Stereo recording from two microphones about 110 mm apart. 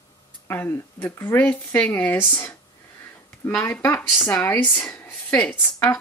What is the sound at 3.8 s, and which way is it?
Speech, 20° left (ahead or behind).